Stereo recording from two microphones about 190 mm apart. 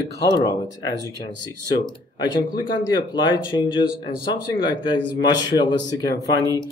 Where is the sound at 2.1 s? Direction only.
20° left (ahead or behind).